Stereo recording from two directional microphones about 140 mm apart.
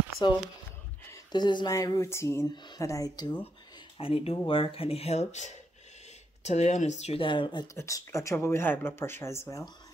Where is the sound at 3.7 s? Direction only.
40° left (ahead or behind).